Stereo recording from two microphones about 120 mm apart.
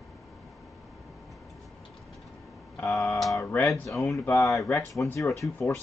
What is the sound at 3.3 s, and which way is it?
Speech, 20° left (ahead or behind).